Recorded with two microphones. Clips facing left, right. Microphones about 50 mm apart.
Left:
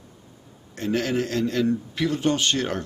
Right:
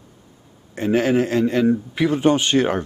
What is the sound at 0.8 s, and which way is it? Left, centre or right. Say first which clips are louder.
Speech: right 6 dB; right.